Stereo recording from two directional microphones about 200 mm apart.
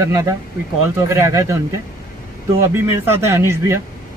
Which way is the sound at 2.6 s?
10° right (ahead or behind).